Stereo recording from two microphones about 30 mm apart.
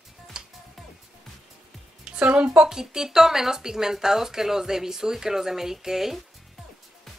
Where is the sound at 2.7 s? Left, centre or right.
Centre.